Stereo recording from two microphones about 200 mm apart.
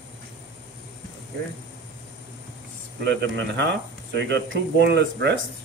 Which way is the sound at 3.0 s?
60° right (ahead or behind).